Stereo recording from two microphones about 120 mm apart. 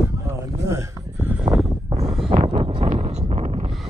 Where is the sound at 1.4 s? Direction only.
Centre (ahead or behind).